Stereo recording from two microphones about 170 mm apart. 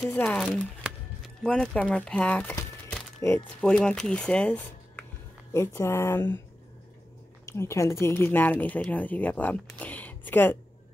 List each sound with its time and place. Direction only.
0.1 s speech: 10° left (ahead or behind)
0.8 s a sound: centre (ahead or behind)
3.6 s speech: 5° left (ahead or behind)
7.4 s speech: 15° left (ahead or behind)